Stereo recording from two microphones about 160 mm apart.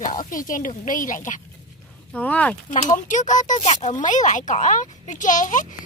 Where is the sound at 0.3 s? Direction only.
55° left (ahead or behind).